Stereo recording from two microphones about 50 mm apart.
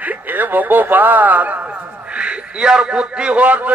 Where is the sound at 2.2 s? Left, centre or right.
Centre.